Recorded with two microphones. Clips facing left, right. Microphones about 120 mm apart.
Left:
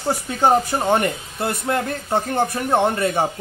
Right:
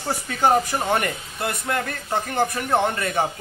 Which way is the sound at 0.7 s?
25° left (ahead or behind).